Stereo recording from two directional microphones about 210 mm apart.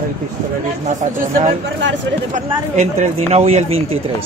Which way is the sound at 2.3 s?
35° right (ahead or behind).